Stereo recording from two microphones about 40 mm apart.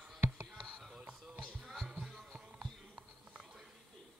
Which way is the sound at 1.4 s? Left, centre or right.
Centre.